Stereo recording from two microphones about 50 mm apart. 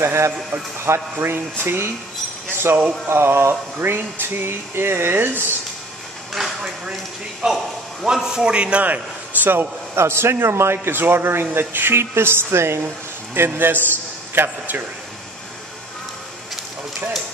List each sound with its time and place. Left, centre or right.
0.0 s a man's voice: right
2.5 s chink: right
3.1 s a man's voice: right
6.3 s a sound: centre
7.4 s a man's voice: centre
8.8 s a man's voice: right
9.9 s a man's voice: right
13.3 s a man's voice: right